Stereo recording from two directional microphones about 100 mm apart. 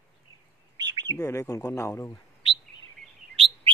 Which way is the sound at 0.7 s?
45° right (ahead or behind).